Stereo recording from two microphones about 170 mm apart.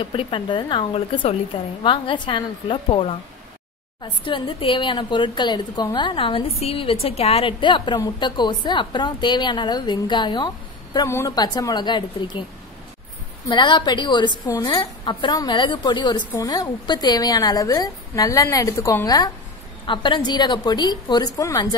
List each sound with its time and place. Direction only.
0.0 s a woman's voice: 30° left (ahead or behind)
13.5 s a woman's voice: 25° left (ahead or behind)